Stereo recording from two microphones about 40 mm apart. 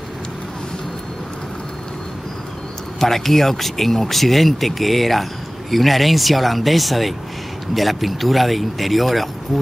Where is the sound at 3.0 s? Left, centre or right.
Centre.